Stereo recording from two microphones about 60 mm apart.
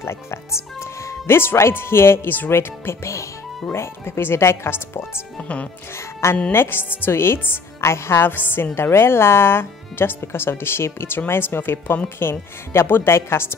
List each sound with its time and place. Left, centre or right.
0.0 s speech: left
5.4 s speech: left
6.5 s speech: left